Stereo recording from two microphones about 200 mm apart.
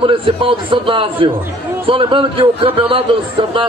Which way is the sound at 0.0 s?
25° right (ahead or behind).